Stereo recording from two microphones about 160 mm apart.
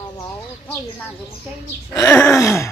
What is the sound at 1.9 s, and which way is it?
Speech, 15° left (ahead or behind).